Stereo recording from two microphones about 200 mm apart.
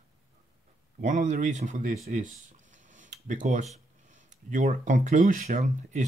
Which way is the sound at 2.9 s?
40° right (ahead or behind).